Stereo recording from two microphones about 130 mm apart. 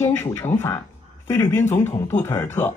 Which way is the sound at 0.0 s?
20° left (ahead or behind).